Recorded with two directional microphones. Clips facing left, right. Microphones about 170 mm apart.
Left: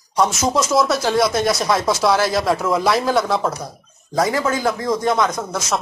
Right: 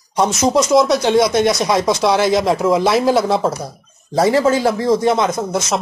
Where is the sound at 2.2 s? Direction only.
20° right (ahead or behind).